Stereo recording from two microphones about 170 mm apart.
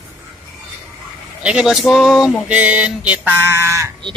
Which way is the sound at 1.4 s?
5° right (ahead or behind).